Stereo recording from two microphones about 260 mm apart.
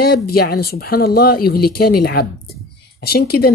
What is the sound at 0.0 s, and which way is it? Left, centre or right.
Speech, left.